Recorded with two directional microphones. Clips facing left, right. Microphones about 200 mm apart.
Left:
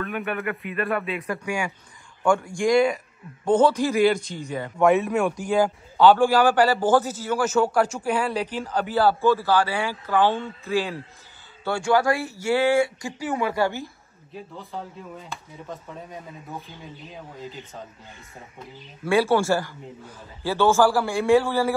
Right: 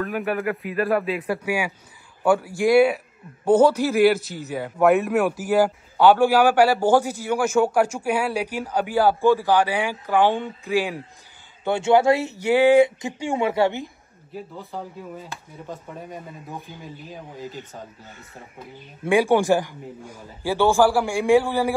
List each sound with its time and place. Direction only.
0.0 s speech: centre (ahead or behind); by 13.8 s 20° right (ahead or behind)
14.3 s speech: 5° right (ahead or behind)
19.0 s speech: 15° right (ahead or behind)